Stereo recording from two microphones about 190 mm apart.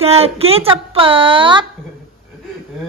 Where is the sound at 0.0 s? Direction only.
30° right (ahead or behind).